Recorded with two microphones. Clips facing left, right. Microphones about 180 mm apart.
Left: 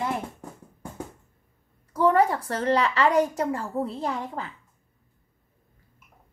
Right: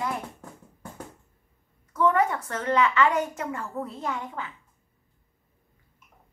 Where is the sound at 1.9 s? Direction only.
35° left (ahead or behind).